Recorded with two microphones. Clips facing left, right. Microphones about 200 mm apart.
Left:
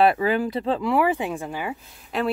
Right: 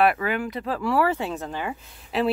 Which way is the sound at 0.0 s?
30° left (ahead or behind).